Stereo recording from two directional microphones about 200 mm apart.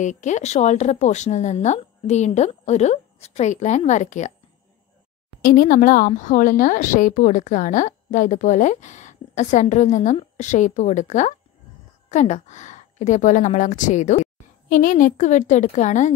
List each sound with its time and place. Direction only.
0.0 s a woman's voice: 35° left (ahead or behind)
5.4 s a woman's voice: 45° left (ahead or behind)